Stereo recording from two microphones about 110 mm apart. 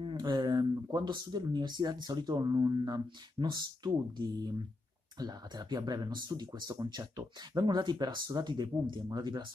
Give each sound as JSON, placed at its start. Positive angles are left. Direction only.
{"t": 0.0, "sound": "speech", "side_deg": -45}
{"t": 5.2, "sound": "speech", "side_deg": -40}